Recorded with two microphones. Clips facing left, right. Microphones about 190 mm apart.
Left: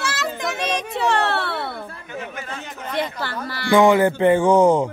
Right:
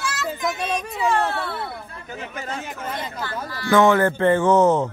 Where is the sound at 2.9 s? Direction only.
75° left (ahead or behind).